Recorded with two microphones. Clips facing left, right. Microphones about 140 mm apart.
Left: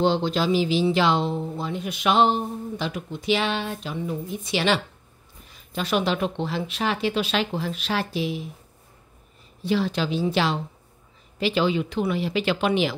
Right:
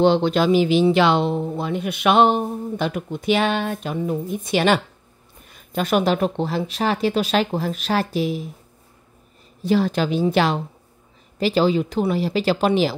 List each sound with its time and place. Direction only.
0.0 s speech: 65° right (ahead or behind); by 8.5 s 45° right (ahead or behind)
9.6 s speech: 45° right (ahead or behind)
11.3 s speech: 40° right (ahead or behind)